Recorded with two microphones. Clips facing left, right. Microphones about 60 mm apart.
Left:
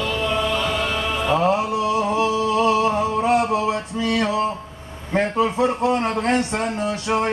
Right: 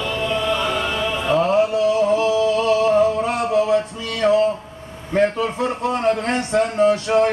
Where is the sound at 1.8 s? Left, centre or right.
Left.